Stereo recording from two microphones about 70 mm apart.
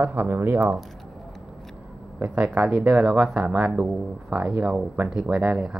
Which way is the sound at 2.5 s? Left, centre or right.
Centre.